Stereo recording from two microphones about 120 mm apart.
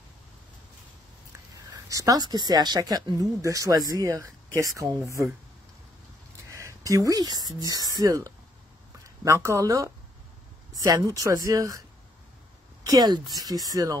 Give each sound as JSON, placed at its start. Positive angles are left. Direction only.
{"t": 1.9, "sound": "speech", "side_deg": -30}
{"t": 6.5, "sound": "speech", "side_deg": -30}
{"t": 12.8, "sound": "speech", "side_deg": -30}